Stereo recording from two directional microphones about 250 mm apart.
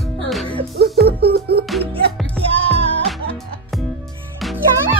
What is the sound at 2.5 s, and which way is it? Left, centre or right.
Music, right.